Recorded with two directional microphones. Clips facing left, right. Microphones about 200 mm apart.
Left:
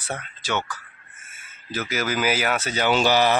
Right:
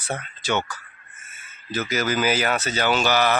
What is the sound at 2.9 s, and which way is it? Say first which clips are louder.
Speech: left 2 dB; 30° left (ahead or behind).